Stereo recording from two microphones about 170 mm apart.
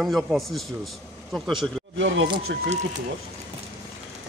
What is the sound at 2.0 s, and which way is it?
Speech, 90° right.